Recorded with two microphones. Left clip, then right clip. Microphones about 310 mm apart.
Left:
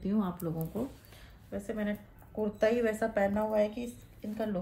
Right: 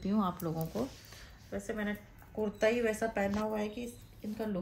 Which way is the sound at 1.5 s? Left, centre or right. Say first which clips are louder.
Left 1 dB; centre.